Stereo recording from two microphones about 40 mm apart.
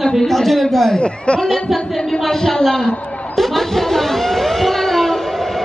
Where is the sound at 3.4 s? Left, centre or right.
Centre.